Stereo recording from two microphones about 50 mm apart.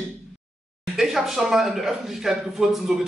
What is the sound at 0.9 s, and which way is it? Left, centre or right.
A man's voice, centre.